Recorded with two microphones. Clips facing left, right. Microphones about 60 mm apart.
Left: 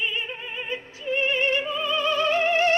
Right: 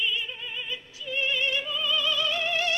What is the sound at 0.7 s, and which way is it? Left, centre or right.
Opera, left.